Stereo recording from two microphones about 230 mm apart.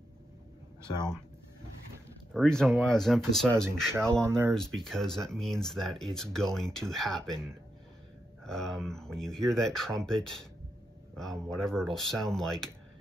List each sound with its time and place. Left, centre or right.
0.9 s speech: centre
2.3 s speech: centre
4.1 s speech: centre
4.6 s speech: centre